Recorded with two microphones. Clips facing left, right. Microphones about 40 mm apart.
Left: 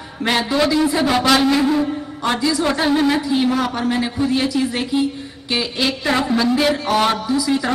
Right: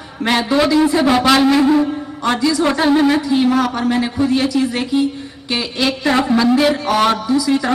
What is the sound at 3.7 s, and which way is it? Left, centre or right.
A woman's voice, centre.